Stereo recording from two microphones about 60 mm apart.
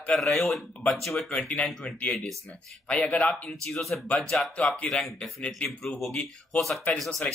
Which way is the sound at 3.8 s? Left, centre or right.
Centre.